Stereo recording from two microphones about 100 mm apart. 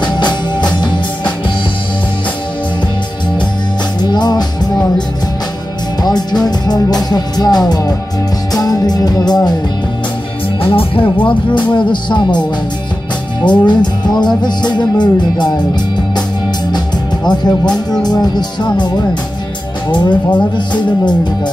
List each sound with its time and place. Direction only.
0.0 s music: 50° left (ahead or behind)
4.0 s music: 45° left (ahead or behind)
6.4 s music: 45° left (ahead or behind)
10.6 s music: 65° left (ahead or behind)
13.4 s music: 50° left (ahead or behind)